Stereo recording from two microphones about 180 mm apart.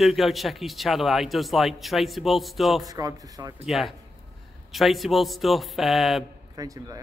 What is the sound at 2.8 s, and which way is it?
Speech, 20° right (ahead or behind).